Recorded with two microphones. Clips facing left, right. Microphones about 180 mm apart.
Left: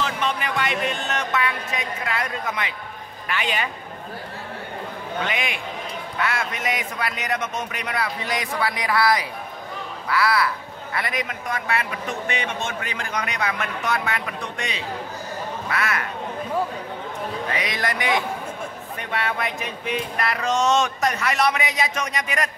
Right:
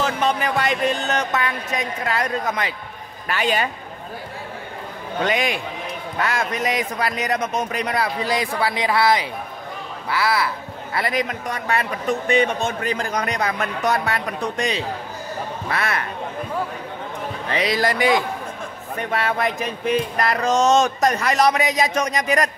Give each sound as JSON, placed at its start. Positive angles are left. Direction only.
{"t": 0.0, "sound": "music", "side_deg": -40}
{"t": 3.3, "sound": "a man's voice", "side_deg": -40}
{"t": 5.2, "sound": "a man's voice", "side_deg": -40}
{"t": 17.5, "sound": "a man's voice", "side_deg": -30}
{"t": 18.9, "sound": "a man's voice", "side_deg": -40}